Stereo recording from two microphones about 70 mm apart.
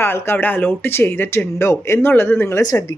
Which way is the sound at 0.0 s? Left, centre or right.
Left.